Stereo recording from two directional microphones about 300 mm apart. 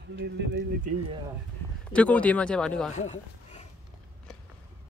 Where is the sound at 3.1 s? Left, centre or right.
Centre.